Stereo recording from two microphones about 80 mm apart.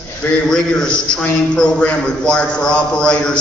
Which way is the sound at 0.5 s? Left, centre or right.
Centre.